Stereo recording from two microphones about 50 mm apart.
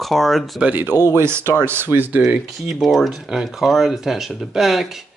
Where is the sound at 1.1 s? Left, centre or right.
Right.